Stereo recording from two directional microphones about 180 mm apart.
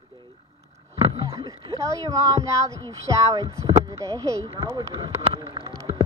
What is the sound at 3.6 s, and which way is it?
Speech, 15° right (ahead or behind).